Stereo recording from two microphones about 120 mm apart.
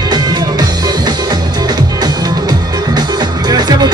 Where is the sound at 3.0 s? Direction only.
35° right (ahead or behind).